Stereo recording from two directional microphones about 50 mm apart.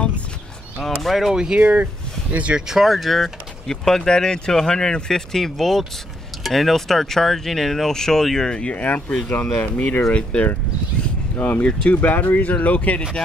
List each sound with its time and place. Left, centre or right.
1.0 s speech: centre
1.3 s speech: centre
1.6 s speech: right
2.7 s speech: centre; by 8.8 s left
9.3 s speech: left
11.0 s a sound: left
11.9 s speech: left